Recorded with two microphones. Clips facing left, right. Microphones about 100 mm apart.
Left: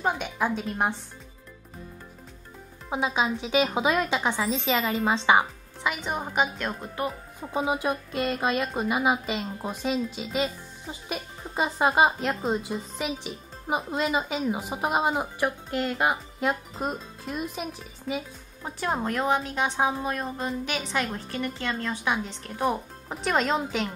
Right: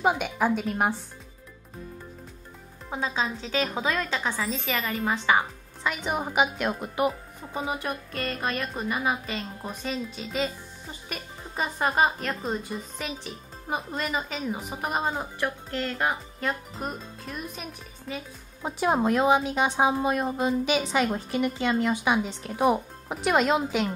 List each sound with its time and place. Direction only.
0.0 s a woman's voice: 5° right (ahead or behind)
2.9 s speech: 15° left (ahead or behind)
5.9 s a woman's voice: 5° right (ahead or behind)
7.8 s speech: 10° left (ahead or behind)
18.6 s a woman's voice: 15° right (ahead or behind)